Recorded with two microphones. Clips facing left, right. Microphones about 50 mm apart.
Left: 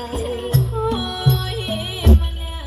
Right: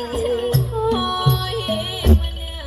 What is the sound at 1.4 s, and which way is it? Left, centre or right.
Music, right.